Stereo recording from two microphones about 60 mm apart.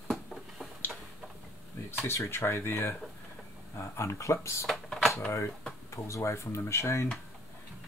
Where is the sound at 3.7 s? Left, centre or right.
Left.